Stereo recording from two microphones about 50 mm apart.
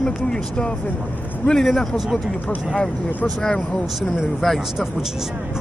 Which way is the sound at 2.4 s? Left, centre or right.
Centre.